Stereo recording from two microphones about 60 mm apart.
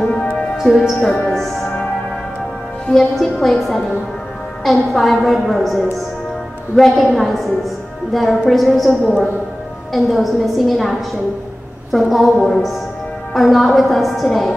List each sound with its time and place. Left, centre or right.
0.0 s music: centre
0.6 s speech: centre
1.0 s music: centre
2.9 s a woman's voice: centre